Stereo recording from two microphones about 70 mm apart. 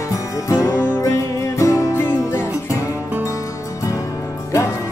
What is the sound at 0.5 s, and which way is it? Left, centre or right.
Music, left.